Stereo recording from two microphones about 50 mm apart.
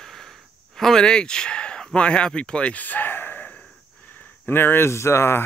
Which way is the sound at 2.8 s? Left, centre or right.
Left.